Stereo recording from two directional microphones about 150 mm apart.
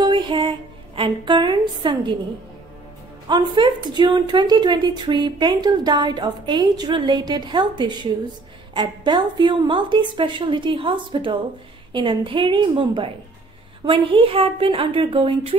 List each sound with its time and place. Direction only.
0.0 s a woman's voice: 30° right (ahead or behind)
3.3 s a woman's voice: 30° right (ahead or behind)